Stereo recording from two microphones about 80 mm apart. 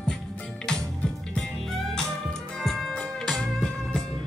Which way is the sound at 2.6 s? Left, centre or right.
Centre.